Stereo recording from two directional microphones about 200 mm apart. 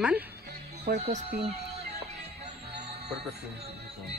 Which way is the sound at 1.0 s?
35° right (ahead or behind).